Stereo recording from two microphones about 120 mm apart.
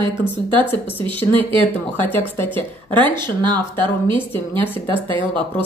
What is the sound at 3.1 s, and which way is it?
Speech, 40° right (ahead or behind).